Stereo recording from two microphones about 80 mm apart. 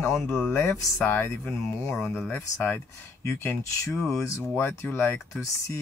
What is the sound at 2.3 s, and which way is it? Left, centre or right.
Speech, left.